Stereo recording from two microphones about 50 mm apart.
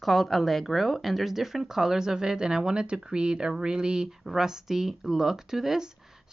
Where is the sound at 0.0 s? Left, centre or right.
Centre.